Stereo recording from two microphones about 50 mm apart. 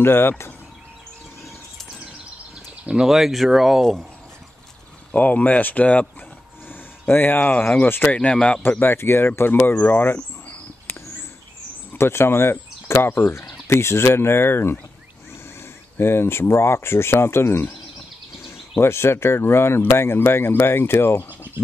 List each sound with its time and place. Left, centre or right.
0.0 s speech: left
2.9 s speech: centre
5.1 s speech: left
6.7 s speech: left
8.1 s speech: left
8.8 s speech: left
12.0 s speech: left
16.0 s speech: left
18.8 s speech: left